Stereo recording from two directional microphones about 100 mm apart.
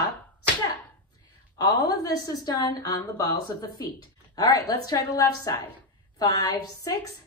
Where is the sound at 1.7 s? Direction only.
40° left (ahead or behind).